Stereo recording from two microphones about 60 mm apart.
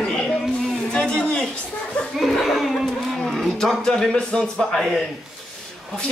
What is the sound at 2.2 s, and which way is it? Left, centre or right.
Speech, centre.